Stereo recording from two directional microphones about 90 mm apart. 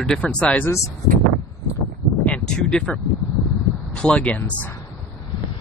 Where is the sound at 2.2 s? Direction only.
10° left (ahead or behind).